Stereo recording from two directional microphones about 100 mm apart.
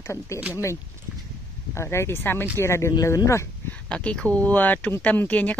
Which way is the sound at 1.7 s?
25° left (ahead or behind).